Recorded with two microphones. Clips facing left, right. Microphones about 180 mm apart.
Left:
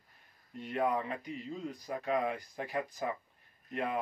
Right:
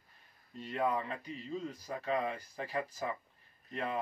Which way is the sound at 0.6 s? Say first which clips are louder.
Left 2 dB; 15° left (ahead or behind).